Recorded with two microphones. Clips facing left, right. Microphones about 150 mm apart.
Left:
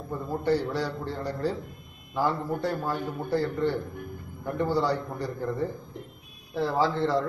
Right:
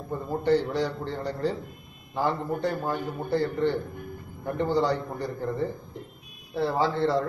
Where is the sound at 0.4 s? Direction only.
10° left (ahead or behind).